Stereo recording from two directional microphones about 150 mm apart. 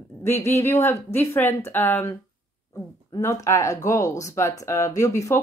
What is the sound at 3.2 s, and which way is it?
Speech, 20° left (ahead or behind).